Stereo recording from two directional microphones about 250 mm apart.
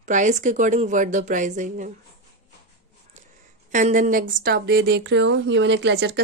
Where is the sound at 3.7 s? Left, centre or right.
Right.